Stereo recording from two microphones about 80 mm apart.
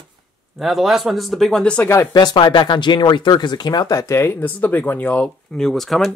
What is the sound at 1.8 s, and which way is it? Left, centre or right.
Speech, left.